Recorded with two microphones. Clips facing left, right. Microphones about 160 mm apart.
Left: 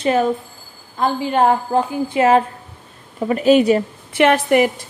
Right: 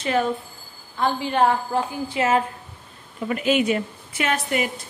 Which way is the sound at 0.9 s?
45° left (ahead or behind).